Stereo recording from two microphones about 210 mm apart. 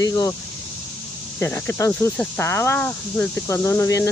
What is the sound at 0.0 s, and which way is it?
Speech, 15° left (ahead or behind).